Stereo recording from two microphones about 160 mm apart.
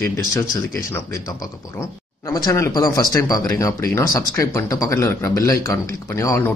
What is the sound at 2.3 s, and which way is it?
Speech, 25° left (ahead or behind).